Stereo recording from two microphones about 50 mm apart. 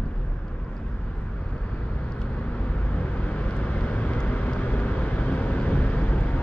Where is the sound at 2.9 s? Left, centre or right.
Left.